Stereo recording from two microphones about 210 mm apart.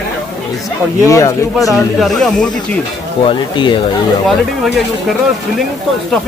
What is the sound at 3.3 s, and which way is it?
Speech, 20° left (ahead or behind).